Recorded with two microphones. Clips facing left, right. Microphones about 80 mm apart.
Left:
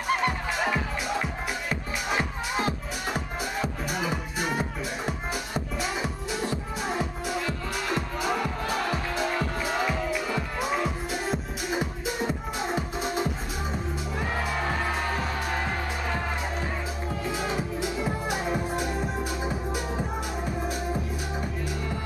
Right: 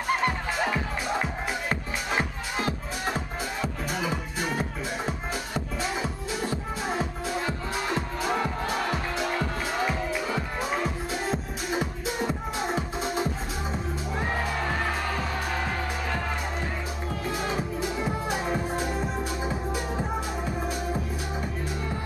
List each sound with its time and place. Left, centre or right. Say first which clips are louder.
2.5 s music: left 1 dB; centre
7.3 s music: right 1 dB; right
12.3 s music: right 1 dB; centre